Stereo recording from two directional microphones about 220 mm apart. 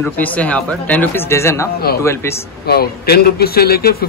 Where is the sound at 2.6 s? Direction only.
45° left (ahead or behind).